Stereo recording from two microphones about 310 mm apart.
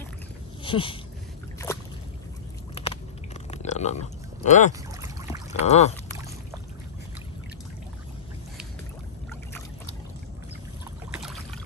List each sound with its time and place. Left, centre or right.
0.7 s speech: centre
1.7 s boat: centre
2.7 s a sound: centre
11.1 s boat: centre